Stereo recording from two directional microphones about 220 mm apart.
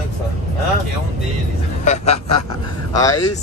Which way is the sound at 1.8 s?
30° left (ahead or behind).